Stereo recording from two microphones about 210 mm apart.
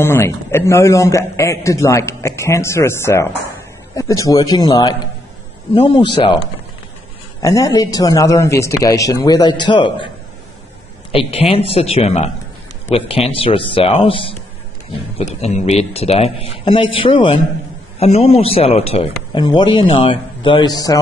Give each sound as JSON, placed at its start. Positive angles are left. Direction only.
{"t": 0.0, "sound": "a man's voice", "side_deg": 10}
{"t": 7.4, "sound": "a man's voice", "side_deg": 15}
{"t": 11.1, "sound": "a man's voice", "side_deg": 30}